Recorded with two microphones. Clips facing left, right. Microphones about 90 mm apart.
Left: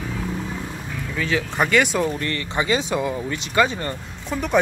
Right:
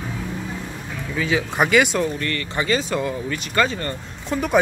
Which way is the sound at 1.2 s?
15° right (ahead or behind).